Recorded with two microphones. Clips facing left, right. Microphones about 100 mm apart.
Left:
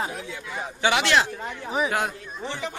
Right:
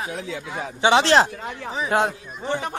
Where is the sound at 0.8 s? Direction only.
30° right (ahead or behind).